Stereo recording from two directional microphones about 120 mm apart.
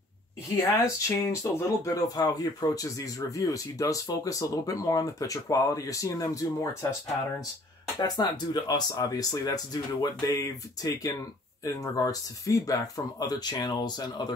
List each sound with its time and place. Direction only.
0.6 s speech: 30° left (ahead or behind)
8.0 s speech: 35° left (ahead or behind)